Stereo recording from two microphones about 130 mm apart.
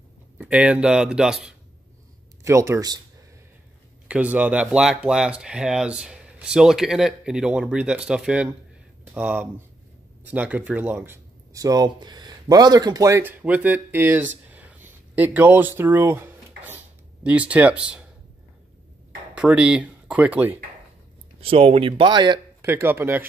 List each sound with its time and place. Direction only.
0.4 s speech: 10° right (ahead or behind)
2.4 s speech: 20° right (ahead or behind)
4.1 s speech: 10° right (ahead or behind)
19.3 s speech: 10° right (ahead or behind)
21.4 s speech: 45° right (ahead or behind)
22.6 s speech: 20° right (ahead or behind)